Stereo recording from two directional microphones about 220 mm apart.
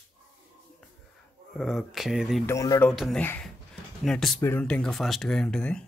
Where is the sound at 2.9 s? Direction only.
Centre (ahead or behind).